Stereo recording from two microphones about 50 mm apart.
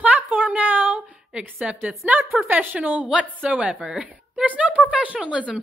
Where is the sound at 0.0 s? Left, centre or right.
Right.